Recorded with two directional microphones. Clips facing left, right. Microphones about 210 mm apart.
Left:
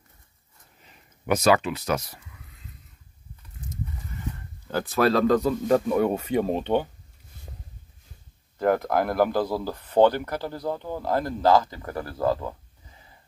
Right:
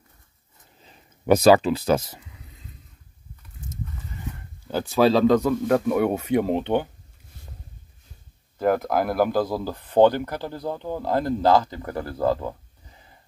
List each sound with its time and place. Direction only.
0.8 s a sound: 35° right (ahead or behind)
4.6 s speech: 5° right (ahead or behind)
8.5 s speech: 5° right (ahead or behind)